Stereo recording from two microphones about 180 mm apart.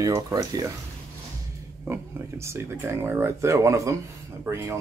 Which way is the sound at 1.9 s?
15° right (ahead or behind).